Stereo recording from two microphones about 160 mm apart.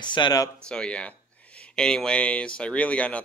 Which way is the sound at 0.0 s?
30° left (ahead or behind).